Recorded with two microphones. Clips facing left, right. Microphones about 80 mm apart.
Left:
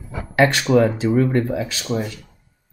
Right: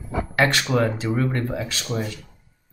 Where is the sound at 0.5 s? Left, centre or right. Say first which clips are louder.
Left 5 dB; centre.